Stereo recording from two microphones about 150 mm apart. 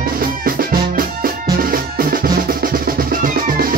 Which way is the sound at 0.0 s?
75° right (ahead or behind).